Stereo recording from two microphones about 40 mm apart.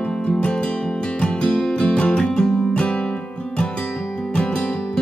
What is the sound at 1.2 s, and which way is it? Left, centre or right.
Music, left.